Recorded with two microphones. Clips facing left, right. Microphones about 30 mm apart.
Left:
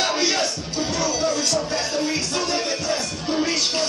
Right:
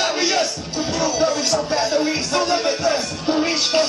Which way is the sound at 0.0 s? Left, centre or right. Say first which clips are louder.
Right 2 dB; centre.